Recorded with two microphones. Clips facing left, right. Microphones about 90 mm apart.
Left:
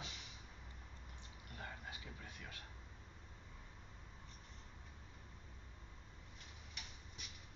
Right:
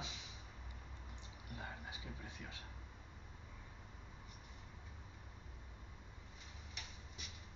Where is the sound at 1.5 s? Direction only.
20° right (ahead or behind).